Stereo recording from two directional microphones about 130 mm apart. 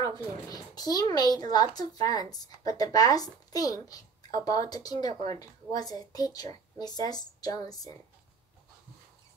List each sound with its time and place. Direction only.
0.0 s speech: 30° left (ahead or behind)